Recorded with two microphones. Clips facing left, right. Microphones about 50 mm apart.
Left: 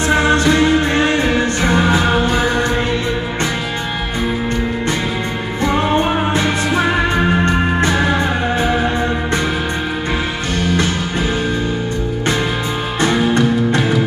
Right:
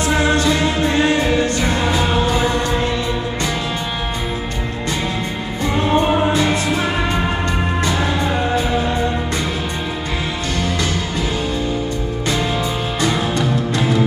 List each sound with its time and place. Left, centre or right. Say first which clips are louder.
0.1 s music: left 4 dB; left
5.6 s music: left 1 dB; left
13.0 s music: left 5 dB; left